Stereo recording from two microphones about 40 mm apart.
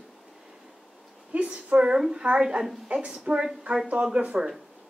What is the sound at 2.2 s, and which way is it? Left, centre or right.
A woman's voice, right.